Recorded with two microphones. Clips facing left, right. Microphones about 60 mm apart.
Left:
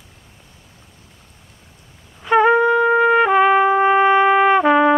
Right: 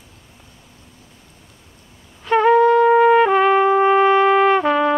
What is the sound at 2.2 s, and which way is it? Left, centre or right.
Trumpet, centre.